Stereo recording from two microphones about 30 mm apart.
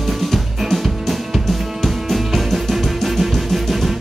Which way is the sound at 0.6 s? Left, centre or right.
Centre.